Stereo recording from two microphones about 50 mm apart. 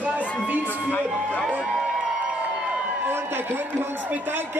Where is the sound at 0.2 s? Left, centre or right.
Left.